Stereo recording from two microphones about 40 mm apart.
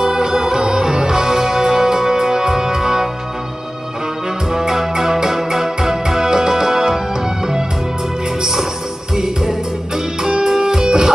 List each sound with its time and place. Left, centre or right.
0.0 s music: centre
4.5 s music: centre
8.4 s music: centre